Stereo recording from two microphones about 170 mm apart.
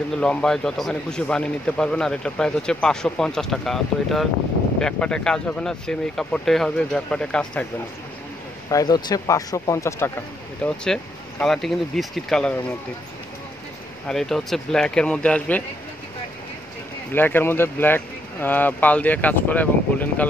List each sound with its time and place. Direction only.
0.1 s speech: 5° left (ahead or behind)
8.6 s speech: 20° left (ahead or behind); by 12.7 s 5° left (ahead or behind)
14.0 s speech: centre (ahead or behind)
17.1 s speech: 10° left (ahead or behind)